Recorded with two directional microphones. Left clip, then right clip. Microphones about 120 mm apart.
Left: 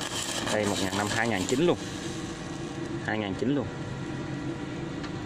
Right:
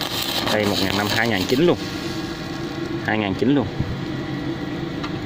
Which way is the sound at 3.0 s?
15° right (ahead or behind).